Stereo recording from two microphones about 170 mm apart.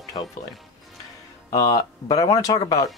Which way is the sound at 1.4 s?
20° left (ahead or behind).